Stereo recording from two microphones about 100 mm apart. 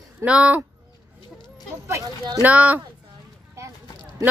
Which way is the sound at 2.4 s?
15° right (ahead or behind).